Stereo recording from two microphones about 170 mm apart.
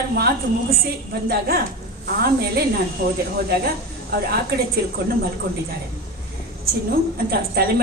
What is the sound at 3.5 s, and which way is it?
Speech, 65° right (ahead or behind).